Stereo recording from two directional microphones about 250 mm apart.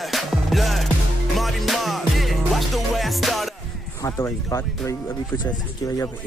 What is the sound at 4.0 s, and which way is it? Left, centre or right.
Speech, centre.